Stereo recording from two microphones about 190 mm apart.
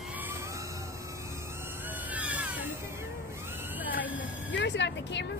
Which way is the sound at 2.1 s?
5° right (ahead or behind).